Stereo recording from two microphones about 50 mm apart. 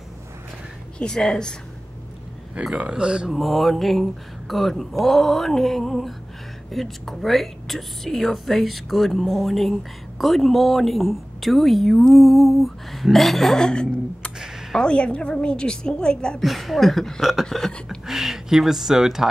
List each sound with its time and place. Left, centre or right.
0.9 s a woman's voice: centre
2.6 s speech: centre
3.3 s a woman's voice: centre
13.6 s a woman's voice: centre
16.3 s a woman's voice: centre
17.5 s a woman's voice: centre
17.8 s a sound: centre